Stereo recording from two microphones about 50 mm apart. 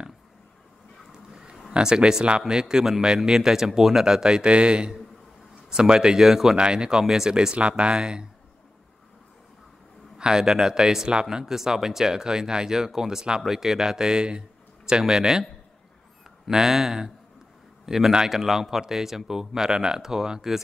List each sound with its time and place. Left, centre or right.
1.1 s a sound: centre
1.7 s speech: centre
10.1 s speech: centre
16.4 s speech: centre